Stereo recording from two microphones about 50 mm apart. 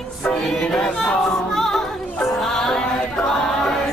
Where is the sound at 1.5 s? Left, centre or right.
Centre.